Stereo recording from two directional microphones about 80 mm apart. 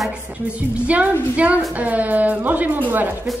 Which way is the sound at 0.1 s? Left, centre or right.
Centre.